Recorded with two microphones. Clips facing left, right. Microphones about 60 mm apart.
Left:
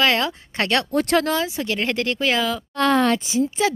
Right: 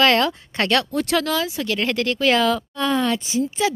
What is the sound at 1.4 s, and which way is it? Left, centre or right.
Speech, left.